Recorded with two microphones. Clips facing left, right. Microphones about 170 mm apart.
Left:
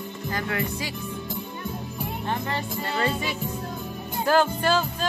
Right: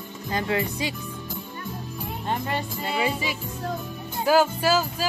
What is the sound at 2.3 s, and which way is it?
Speech, 15° right (ahead or behind).